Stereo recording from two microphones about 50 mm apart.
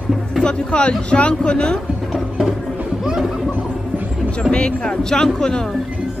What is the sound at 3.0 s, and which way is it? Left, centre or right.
Music, centre.